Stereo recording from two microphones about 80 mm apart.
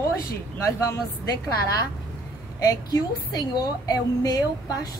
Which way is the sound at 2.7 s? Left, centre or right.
Left.